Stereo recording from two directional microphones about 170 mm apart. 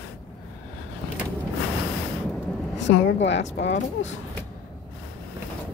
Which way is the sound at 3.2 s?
90° left.